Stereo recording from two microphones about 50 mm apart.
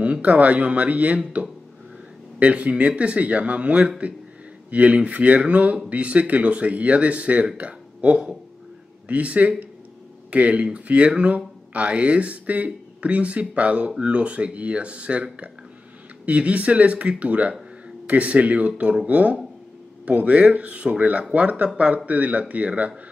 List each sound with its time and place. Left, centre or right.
0.0 s speech: right
16.3 s speech: right